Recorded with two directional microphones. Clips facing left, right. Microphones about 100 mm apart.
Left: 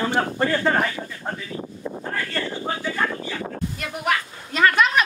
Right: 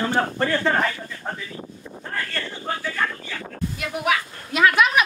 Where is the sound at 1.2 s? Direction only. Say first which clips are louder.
Even; centre (ahead or behind).